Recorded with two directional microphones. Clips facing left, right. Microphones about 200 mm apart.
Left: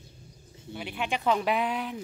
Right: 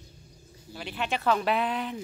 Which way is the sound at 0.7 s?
10° left (ahead or behind).